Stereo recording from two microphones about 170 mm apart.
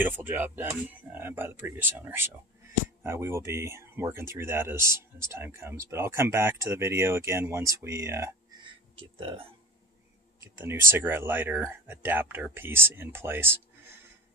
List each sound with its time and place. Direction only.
0.0 s speech: 10° right (ahead or behind)
10.6 s speech: 15° right (ahead or behind)